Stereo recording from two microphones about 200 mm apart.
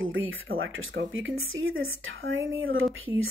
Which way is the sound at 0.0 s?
75° right (ahead or behind).